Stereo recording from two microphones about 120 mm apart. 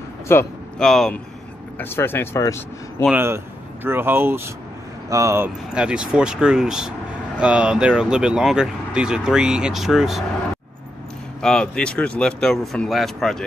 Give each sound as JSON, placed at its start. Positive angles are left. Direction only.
{"t": 0.3, "sound": "speech", "side_deg": 20}
{"t": 0.7, "sound": "speech", "side_deg": 5}
{"t": 1.8, "sound": "speech", "side_deg": 20}
{"t": 3.2, "sound": "speech", "side_deg": -20}
{"t": 5.8, "sound": "speech", "side_deg": -10}
{"t": 11.4, "sound": "speech", "side_deg": 5}